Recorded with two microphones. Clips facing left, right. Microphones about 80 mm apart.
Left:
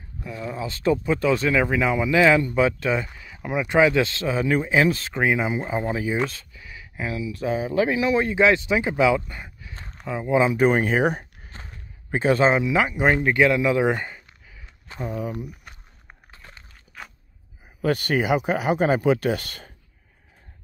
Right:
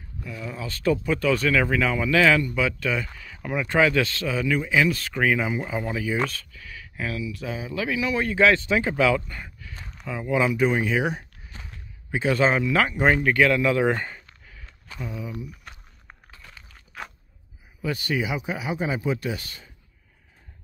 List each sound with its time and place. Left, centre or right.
0.2 s speech: left
3.1 s speech: centre
7.3 s speech: left; by 9.8 s centre
9.8 s a sound: left
10.0 s speech: left
10.6 s speech: left; by 14.7 s centre
14.9 s speech: left
16.3 s a sound: left
17.8 s speech: left